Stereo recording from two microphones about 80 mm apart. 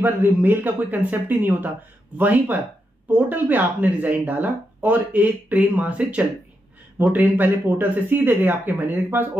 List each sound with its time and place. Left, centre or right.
0.0 s speech: right